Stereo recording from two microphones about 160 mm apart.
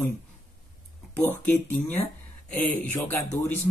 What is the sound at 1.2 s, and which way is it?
Speech, 10° left (ahead or behind).